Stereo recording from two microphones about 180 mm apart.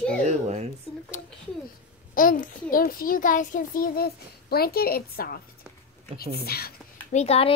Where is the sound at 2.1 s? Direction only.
50° left (ahead or behind).